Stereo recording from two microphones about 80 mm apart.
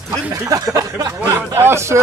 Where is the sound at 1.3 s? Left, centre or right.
Right.